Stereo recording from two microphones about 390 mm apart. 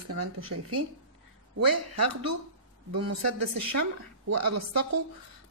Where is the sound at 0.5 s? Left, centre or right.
Right.